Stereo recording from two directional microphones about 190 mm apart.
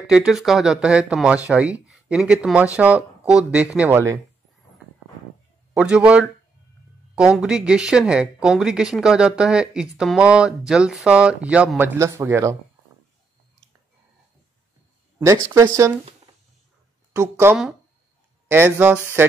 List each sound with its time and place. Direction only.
0.0 s speech: 5° right (ahead or behind)
5.8 s speech: 5° right (ahead or behind)
15.1 s speech: 15° right (ahead or behind)
17.2 s speech: 10° right (ahead or behind)